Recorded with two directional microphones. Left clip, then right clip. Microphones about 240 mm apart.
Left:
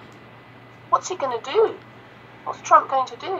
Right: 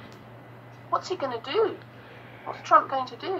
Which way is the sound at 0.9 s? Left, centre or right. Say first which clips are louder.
Left 6 dB; left.